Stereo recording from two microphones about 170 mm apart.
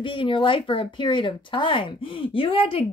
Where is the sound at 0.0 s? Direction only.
30° left (ahead or behind).